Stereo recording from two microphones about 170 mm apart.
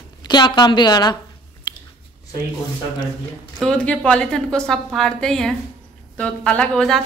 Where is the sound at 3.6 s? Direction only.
5° left (ahead or behind).